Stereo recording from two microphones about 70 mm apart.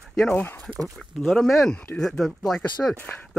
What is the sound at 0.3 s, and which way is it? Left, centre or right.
Speech, left.